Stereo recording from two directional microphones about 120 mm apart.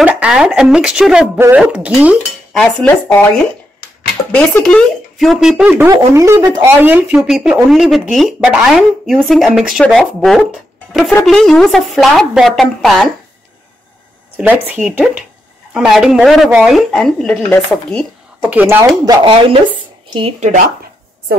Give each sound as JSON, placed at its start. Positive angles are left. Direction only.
{"t": 0.0, "sound": "a woman's voice", "side_deg": -10}
{"t": 2.5, "sound": "cutlery", "side_deg": 5}
{"t": 4.3, "sound": "a woman's voice", "side_deg": 10}
{"t": 5.9, "sound": "speech", "side_deg": -25}
{"t": 7.2, "sound": "a woman's voice", "side_deg": -5}
{"t": 14.3, "sound": "a woman's voice", "side_deg": -10}
{"t": 18.5, "sound": "speech", "side_deg": -15}
{"t": 19.2, "sound": "speech", "side_deg": -45}
{"t": 20.3, "sound": "speech", "side_deg": -90}